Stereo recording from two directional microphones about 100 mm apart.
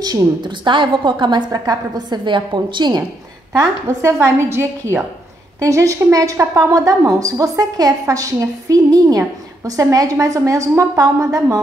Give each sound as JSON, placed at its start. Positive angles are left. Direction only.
{"t": 0.0, "sound": "a woman's voice", "side_deg": -45}
{"t": 3.8, "sound": "a woman's voice", "side_deg": -30}